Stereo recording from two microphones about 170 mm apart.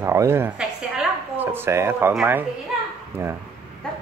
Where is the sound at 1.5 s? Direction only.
15° right (ahead or behind).